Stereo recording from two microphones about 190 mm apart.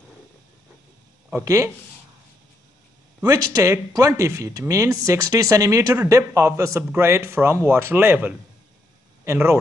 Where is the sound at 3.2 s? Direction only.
20° right (ahead or behind).